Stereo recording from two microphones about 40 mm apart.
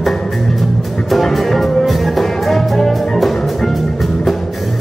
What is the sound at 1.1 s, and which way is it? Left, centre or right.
Music, centre.